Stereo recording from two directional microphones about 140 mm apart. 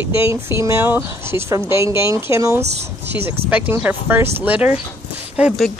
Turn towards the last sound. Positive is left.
turn(degrees=-5)  # may be behind; listen again after turning